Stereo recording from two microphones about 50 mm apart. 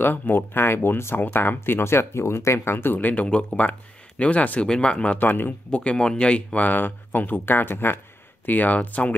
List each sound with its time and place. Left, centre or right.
0.0 s speech: left
3.0 s speech: left
3.3 s speech: left
5.2 s speech: left
5.7 s speech: left
8.5 s speech: left